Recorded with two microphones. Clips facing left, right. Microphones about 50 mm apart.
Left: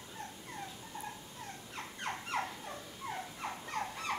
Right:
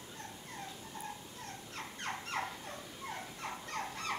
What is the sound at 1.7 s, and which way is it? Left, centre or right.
Dog, centre.